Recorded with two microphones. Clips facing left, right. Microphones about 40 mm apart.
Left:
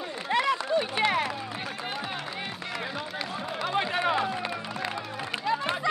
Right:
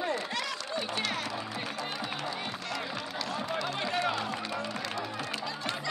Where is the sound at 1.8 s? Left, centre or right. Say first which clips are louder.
Left 2 dB; left.